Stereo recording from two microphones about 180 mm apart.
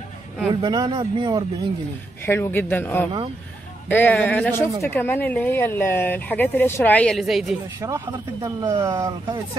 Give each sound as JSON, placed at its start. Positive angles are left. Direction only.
{"t": 0.6, "sound": "speech", "side_deg": -25}
{"t": 2.2, "sound": "speech", "side_deg": 10}
{"t": 7.8, "sound": "speech", "side_deg": -20}